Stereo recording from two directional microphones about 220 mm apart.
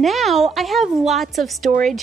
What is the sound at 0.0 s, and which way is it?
Speech, centre (ahead or behind).